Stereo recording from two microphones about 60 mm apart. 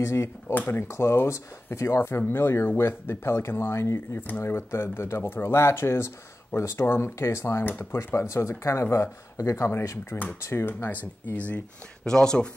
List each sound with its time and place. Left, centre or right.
0.0 s speech: left
0.6 s speech: left
0.8 s speech: left
12.1 s speech: centre